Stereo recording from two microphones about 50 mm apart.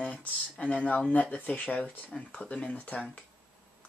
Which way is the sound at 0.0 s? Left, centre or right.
Left.